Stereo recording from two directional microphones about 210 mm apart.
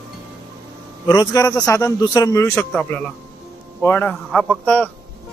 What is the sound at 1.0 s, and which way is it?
A man's voice, 15° left (ahead or behind).